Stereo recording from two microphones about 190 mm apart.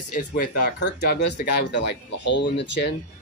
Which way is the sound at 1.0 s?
65° left (ahead or behind).